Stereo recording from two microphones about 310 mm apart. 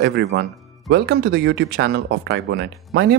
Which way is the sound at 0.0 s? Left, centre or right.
Right.